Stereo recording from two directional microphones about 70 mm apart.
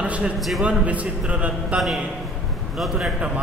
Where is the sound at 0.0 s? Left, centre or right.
Centre.